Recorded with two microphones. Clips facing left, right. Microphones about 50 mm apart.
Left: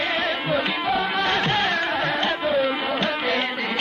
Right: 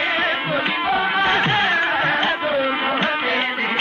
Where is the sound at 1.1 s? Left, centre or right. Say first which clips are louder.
Right 4 dB; right.